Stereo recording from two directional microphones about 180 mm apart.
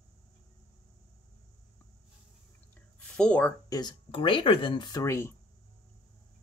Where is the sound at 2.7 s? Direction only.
5° left (ahead or behind).